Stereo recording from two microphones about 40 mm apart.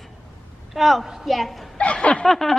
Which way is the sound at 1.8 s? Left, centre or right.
Left.